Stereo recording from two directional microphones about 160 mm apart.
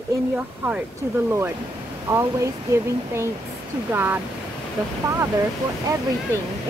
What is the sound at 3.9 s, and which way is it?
Speech, 10° right (ahead or behind).